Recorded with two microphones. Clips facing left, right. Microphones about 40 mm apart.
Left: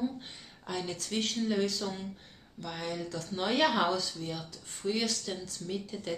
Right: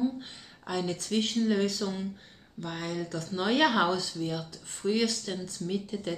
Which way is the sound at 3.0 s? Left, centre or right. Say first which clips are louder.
Right 3 dB; centre.